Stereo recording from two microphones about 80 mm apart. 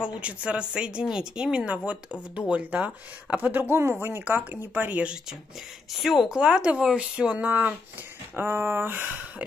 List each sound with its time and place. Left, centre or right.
0.0 s a woman's voice: centre
5.9 s a woman's voice: centre
8.4 s speech: right